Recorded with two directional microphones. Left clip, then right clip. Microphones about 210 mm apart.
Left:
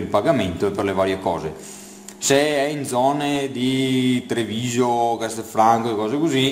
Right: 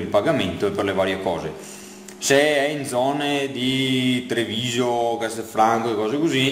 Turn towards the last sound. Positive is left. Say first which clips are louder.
# left 1 dB
turn(degrees=50)  # may be behind; listen again after turning